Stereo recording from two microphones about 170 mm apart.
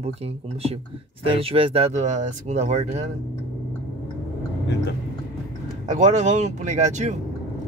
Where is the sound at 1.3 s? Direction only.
35° right (ahead or behind).